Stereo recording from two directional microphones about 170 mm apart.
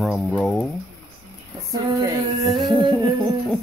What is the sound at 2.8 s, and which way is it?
Female singing, 30° right (ahead or behind).